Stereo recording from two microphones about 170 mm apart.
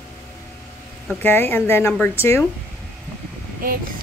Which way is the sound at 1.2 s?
10° left (ahead or behind).